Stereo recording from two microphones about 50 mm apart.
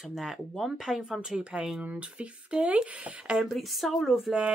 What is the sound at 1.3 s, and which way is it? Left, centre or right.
Speech, centre.